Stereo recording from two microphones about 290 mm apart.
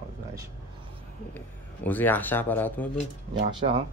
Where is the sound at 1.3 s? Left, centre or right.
Centre.